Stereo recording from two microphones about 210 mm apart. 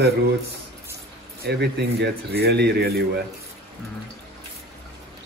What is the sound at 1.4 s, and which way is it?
A man's voice, 50° right (ahead or behind).